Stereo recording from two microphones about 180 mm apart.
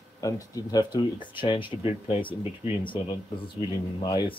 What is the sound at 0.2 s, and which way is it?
Speech, 20° left (ahead or behind).